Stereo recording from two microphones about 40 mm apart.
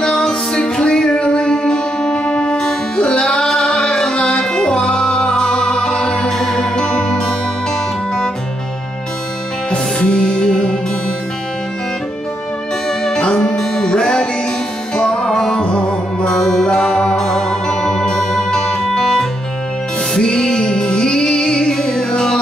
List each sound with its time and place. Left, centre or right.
0.0 s music: centre
9.7 s music: left
13.0 s music: left
15.6 s music: left
16.3 s music: centre
18.3 s music: centre